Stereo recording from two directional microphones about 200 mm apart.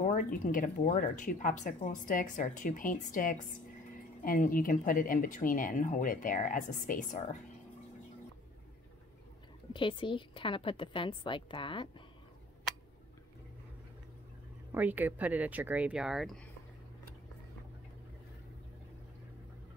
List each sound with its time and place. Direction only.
0.0 s speech: 45° left (ahead or behind)
9.7 s a woman's voice: 25° left (ahead or behind)
14.7 s speech: 10° right (ahead or behind)